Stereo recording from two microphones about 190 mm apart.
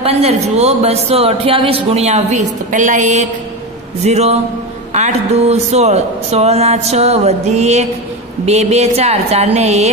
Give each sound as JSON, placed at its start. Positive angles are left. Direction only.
{"t": 0.0, "sound": "speech", "side_deg": -35}